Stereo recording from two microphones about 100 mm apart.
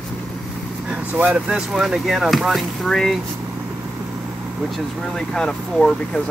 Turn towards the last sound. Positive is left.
turn(degrees=5)  # may be behind; listen again after turning